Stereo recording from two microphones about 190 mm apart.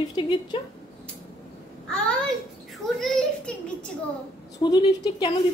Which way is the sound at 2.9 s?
5° left (ahead or behind).